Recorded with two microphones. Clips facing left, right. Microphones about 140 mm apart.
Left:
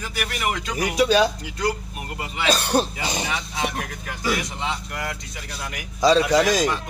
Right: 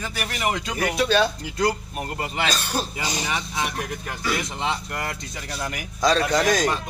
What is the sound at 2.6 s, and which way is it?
Speech, 60° left (ahead or behind).